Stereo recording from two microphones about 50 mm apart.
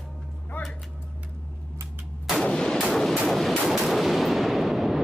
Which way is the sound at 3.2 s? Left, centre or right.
Centre.